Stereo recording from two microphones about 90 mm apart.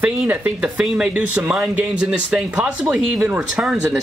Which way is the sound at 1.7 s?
15° right (ahead or behind).